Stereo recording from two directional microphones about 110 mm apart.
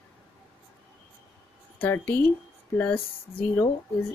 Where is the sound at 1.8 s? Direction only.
20° left (ahead or behind).